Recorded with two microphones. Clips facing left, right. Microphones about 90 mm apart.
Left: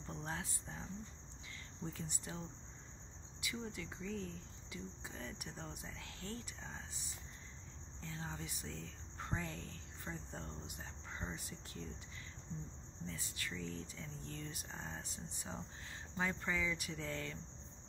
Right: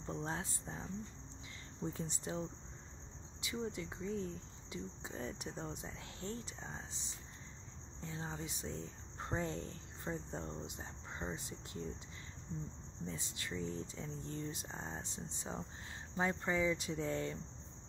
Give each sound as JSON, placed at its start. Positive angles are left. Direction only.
{"t": 0.0, "sound": "speech", "side_deg": -25}
{"t": 1.9, "sound": "speech", "side_deg": -25}
{"t": 13.0, "sound": "speech", "side_deg": -25}